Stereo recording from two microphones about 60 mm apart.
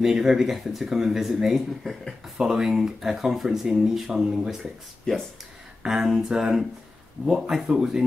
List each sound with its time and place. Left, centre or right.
0.0 s speech: centre
2.3 s speech: centre
5.1 s speech: centre
5.8 s a sound: centre
6.0 s speech: centre